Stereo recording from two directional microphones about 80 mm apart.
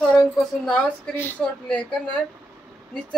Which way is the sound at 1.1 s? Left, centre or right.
Left.